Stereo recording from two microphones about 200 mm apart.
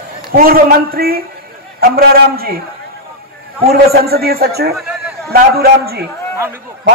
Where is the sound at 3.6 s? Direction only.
50° right (ahead or behind).